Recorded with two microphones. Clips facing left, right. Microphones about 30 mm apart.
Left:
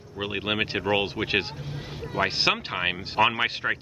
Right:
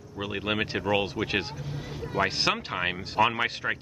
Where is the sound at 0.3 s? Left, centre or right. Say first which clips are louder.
Left 2 dB; centre.